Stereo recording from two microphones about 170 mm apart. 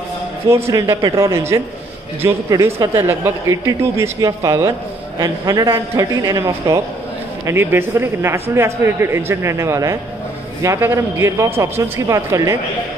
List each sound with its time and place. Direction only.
0.5 s a man's voice: 15° right (ahead or behind)